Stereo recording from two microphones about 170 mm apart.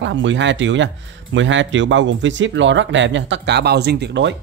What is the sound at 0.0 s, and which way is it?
Speech, 90° right.